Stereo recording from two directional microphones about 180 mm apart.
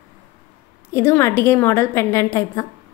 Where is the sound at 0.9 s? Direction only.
15° left (ahead or behind).